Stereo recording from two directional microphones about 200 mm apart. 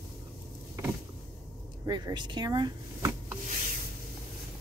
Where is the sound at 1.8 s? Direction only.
20° right (ahead or behind).